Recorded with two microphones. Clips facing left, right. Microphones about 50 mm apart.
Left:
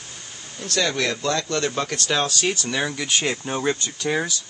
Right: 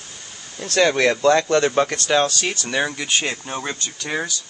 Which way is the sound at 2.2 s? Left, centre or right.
Centre.